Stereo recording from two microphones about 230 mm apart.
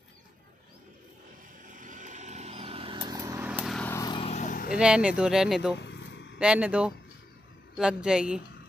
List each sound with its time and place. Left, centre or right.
1.7 s vehicle: right; by 4.7 s left
4.7 s speech: centre
5.8 s vehicle: left
6.3 s speech: centre